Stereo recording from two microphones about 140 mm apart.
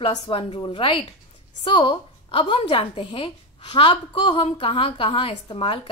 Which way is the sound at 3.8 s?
45° left (ahead or behind).